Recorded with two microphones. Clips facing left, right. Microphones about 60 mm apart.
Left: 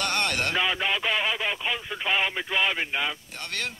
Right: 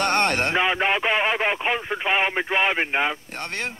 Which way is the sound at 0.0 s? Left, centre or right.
Right.